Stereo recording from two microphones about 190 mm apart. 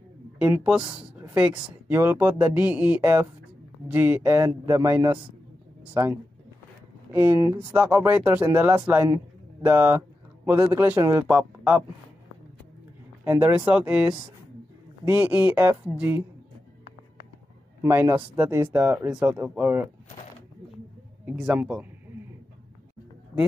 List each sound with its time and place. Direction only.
0.4 s speech: 5° right (ahead or behind)
13.2 s speech: 10° right (ahead or behind)
17.8 s speech: 10° right (ahead or behind)
21.3 s speech: 5° right (ahead or behind)